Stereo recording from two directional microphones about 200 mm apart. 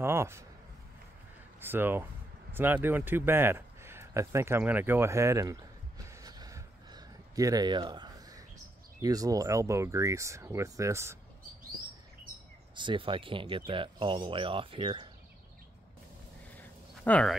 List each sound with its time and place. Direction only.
0.0 s speech: 10° right (ahead or behind)
1.6 s speech: 10° right (ahead or behind)
2.5 s a sound: 10° right (ahead or behind)
9.0 s speech: 15° right (ahead or behind)
12.7 s speech: 25° right (ahead or behind)
16.5 s a sound: 5° left (ahead or behind)